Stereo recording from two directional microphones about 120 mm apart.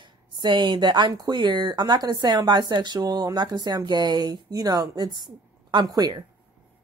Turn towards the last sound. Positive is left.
turn(degrees=-35)  # may be behind; listen again after turning